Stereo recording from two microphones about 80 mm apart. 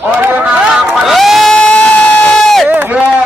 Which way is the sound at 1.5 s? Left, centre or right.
Centre.